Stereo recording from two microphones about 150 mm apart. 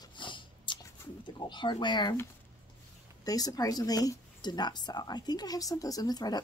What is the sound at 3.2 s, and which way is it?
Speech, 25° left (ahead or behind).